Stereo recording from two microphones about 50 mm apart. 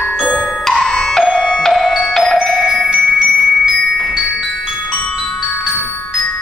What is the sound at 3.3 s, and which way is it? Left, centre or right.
Mallet percussion, centre.